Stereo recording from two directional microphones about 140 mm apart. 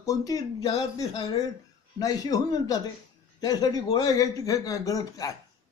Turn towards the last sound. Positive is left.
turn(degrees=25)  # may be behind; listen again after turning